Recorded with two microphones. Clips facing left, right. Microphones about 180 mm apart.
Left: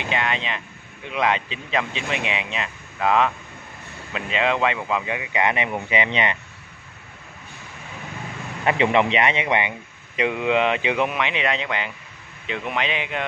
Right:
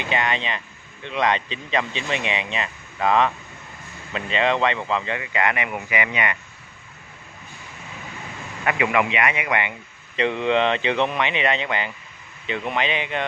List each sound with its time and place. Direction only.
0.0 s speech: centre (ahead or behind); by 6.3 s 25° left (ahead or behind)
8.6 s speech: 30° left (ahead or behind)
10.1 s speech: 10° left (ahead or behind)